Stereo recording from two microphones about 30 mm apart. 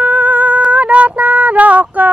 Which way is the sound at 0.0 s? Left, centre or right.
Right.